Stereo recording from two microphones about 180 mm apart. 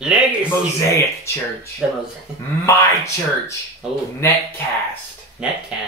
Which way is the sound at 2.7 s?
15° left (ahead or behind).